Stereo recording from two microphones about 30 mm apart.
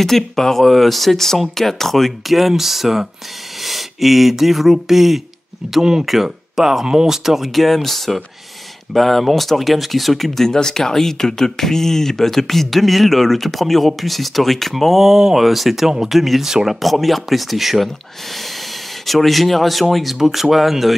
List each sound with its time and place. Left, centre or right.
0.0 s speech: centre
6.9 s speech: right
7.2 s speech: centre
7.6 s speech: centre
10.5 s speech: left; by 15.0 s centre
15.0 s speech: centre
15.4 s speech: centre